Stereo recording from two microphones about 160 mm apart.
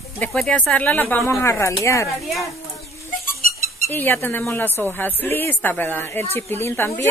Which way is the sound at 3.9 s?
10° left (ahead or behind).